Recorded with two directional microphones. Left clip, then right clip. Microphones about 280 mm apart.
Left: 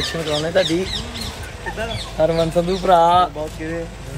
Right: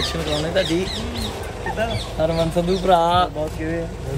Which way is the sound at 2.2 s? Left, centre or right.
Left.